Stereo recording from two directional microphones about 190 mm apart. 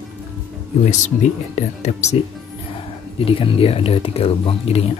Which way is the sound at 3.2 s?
30° left (ahead or behind).